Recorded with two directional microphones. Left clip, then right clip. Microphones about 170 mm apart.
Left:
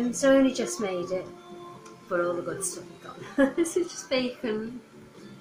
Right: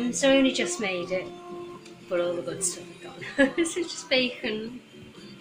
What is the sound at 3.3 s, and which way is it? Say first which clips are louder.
A woman's voice: even; 5° right (ahead or behind).